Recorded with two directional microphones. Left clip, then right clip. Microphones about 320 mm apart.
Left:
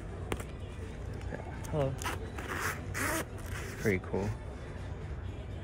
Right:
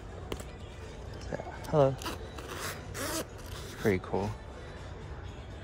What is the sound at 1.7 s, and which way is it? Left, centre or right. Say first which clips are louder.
Speech: right 8 dB; right.